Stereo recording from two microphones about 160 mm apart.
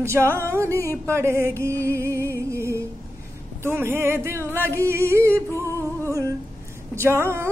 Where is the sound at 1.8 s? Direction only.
15° right (ahead or behind).